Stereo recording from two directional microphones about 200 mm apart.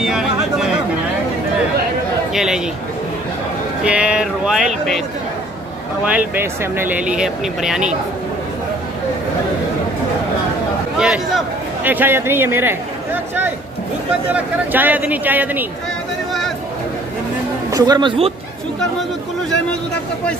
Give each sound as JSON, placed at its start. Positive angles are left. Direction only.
{"t": 0.0, "sound": "chatter", "side_deg": 0}
{"t": 2.3, "sound": "speech", "side_deg": -5}
{"t": 3.8, "sound": "speech", "side_deg": -5}
{"t": 6.0, "sound": "speech", "side_deg": -10}
{"t": 11.0, "sound": "a man's voice", "side_deg": -5}
{"t": 17.6, "sound": "speech", "side_deg": -20}